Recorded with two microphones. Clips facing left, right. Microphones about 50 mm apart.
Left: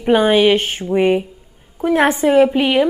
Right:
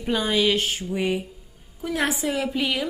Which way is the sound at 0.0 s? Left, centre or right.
Left.